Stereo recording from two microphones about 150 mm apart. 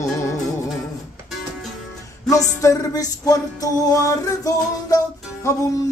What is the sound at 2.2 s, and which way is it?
Music, 20° left (ahead or behind).